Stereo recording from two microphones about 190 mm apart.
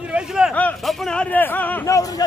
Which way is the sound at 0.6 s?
5° left (ahead or behind).